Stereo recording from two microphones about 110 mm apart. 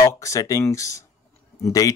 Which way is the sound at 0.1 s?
30° left (ahead or behind).